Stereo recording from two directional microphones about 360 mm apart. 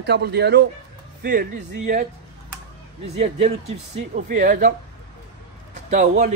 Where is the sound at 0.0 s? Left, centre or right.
Right.